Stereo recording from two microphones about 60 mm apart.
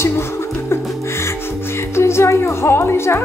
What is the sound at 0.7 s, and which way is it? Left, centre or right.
Music, left.